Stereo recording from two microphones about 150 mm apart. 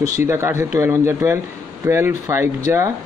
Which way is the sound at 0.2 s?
15° right (ahead or behind).